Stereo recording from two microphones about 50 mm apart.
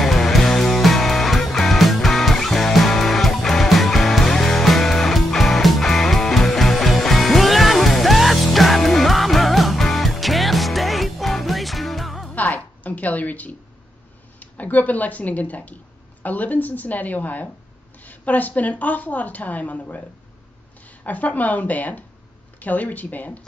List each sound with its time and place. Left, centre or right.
0.0 s music: centre
12.4 s a sound: left
14.4 s a woman's voice: left
21.0 s a woman's voice: left